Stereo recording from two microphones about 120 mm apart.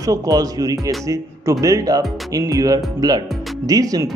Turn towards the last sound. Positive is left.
turn(degrees=-30)  # may be behind; listen again after turning